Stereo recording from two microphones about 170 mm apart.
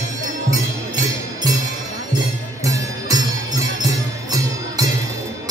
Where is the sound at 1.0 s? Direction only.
20° right (ahead or behind).